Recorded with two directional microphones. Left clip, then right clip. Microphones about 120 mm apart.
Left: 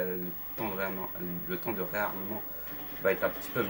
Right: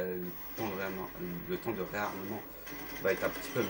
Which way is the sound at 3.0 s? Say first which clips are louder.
Left 3 dB; 25° right (ahead or behind).